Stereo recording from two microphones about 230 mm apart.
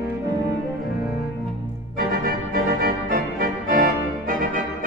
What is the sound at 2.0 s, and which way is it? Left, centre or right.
Organ, right.